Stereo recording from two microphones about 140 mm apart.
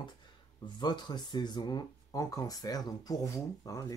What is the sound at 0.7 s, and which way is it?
Speech, 30° left (ahead or behind).